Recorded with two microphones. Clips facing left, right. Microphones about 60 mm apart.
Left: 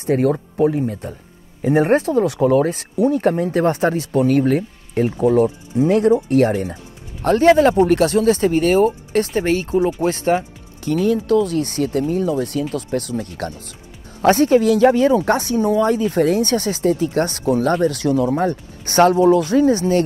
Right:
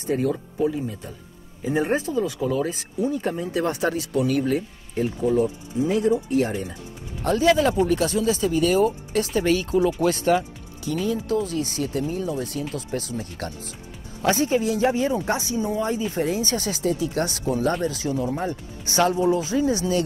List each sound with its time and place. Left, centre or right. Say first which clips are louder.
0.0 s speech: left 6 dB; left
10.8 s speech: left 7 dB; left
13.1 s speech: left 6 dB; left
14.2 s speech: left 8 dB; left